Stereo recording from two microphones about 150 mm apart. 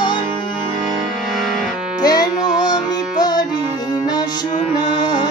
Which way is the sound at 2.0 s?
25° left (ahead or behind).